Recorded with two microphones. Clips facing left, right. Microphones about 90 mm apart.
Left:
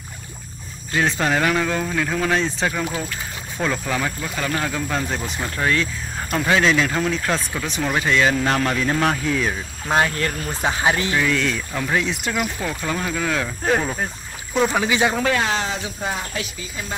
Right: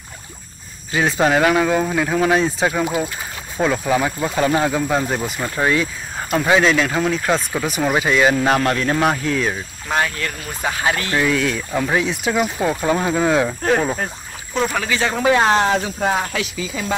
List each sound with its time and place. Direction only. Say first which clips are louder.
0.9 s speech: right 4 dB; 5° right (ahead or behind)
9.2 s speech: right 2 dB; centre (ahead or behind)
9.8 s speech: left 1 dB; 25° left (ahead or behind)
10.1 s speech: left 2 dB; 35° left (ahead or behind)
10.6 s speech: even; 20° left (ahead or behind)
11.1 s speech: right 2 dB; 5° right (ahead or behind)
12.3 s speech: right 5 dB; 20° right (ahead or behind)
14.5 s speech: left 1 dB; 15° left (ahead or behind)
15.4 s speech: right 7 dB; 50° right (ahead or behind)
15.7 s speech: right 8 dB; 65° right (ahead or behind); by 16.8 s 90° right